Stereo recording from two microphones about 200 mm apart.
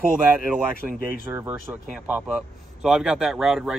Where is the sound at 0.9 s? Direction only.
10° right (ahead or behind).